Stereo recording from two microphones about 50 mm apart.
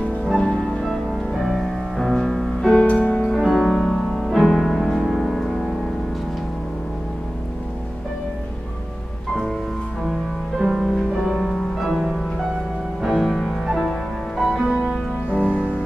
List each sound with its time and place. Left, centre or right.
0.8 s music: centre
2.6 s music: centre
3.3 s music: centre
10.6 s music: centre
14.6 s music: centre
15.4 s music: left